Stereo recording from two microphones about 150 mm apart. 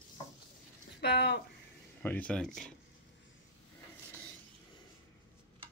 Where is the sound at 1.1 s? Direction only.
90° left.